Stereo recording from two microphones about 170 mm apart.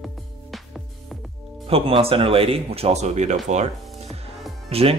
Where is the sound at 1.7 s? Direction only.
35° right (ahead or behind).